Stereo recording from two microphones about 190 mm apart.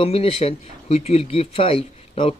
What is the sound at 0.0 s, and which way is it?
A man's voice, 30° left (ahead or behind).